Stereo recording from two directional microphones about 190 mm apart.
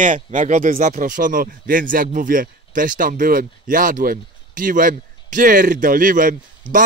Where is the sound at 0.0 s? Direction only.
40° right (ahead or behind).